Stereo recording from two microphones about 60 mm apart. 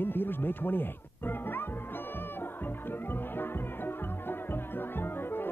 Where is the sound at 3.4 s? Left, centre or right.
Left.